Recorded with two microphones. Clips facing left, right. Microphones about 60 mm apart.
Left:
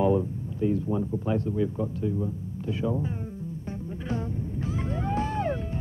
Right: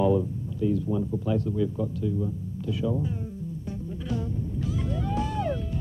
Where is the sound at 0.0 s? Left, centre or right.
Left.